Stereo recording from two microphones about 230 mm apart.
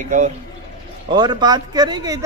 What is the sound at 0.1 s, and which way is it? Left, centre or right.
Speech, right.